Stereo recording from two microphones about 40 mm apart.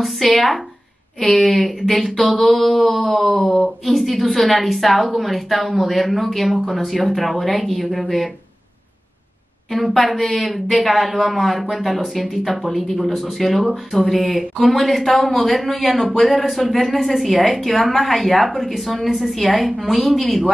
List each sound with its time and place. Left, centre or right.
0.0 s a woman's voice: centre
3.3 s speech: left
3.8 s a woman's voice: centre
9.7 s a woman's voice: centre